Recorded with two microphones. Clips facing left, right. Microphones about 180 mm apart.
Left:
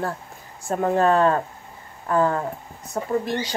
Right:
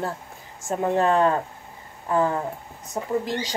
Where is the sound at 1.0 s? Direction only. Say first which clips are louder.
Left 2 dB; 20° right (ahead or behind).